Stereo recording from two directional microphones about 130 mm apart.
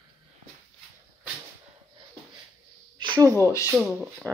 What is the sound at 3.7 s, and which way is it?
Speech, centre (ahead or behind).